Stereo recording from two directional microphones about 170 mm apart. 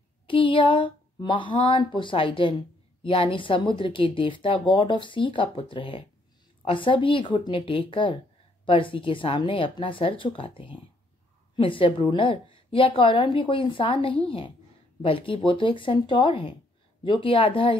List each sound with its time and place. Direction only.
0.3 s a woman's voice: 30° left (ahead or behind)